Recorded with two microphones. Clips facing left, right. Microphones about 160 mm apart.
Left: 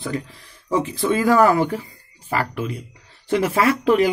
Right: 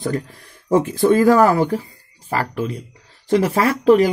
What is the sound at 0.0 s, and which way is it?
A man's voice, 45° right (ahead or behind).